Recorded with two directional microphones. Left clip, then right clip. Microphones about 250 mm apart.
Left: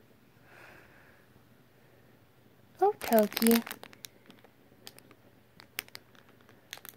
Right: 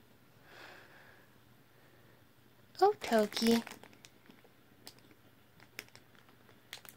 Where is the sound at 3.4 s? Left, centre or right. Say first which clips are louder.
Left 4 dB; left.